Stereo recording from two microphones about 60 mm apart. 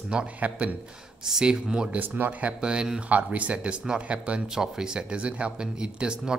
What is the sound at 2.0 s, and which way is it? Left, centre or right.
Speech, right.